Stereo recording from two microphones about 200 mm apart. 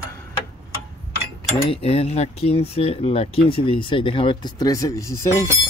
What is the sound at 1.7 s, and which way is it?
Speech, 30° left (ahead or behind).